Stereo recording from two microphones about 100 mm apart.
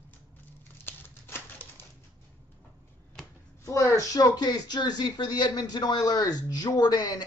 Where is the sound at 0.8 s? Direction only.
20° left (ahead or behind).